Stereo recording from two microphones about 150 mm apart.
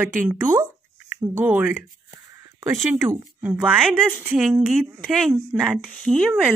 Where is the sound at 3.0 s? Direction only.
15° right (ahead or behind).